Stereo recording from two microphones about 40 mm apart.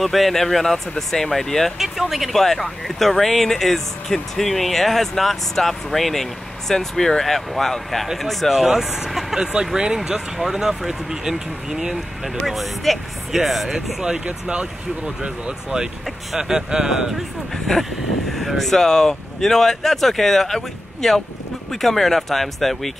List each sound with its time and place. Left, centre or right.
0.0 s speech: centre
1.8 s speech: centre
2.3 s speech: centre
12.4 s speech: centre
14.2 s speech: right
17.7 s speech: centre